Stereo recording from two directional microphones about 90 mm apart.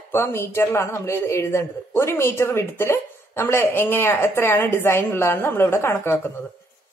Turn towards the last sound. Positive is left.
turn(degrees=25)  # may be behind; listen again after turning